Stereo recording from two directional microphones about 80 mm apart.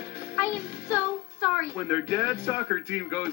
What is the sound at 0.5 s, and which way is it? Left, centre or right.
Music, left.